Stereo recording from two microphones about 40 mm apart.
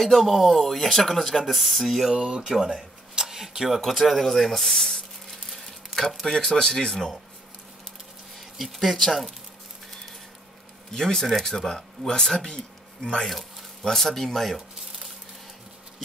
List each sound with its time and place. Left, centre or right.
0.0 s speech: centre
2.1 s speech: right; by 5.4 s centre
5.5 s a sound: centre
6.0 s speech: centre
8.4 s speech: centre
10.9 s speech: centre
13.3 s a sound: centre
13.8 s speech: centre